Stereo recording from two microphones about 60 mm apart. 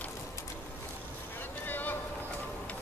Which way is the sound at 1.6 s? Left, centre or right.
Left.